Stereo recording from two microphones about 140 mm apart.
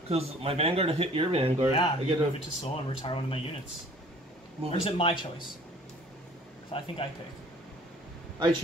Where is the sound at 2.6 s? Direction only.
40° left (ahead or behind).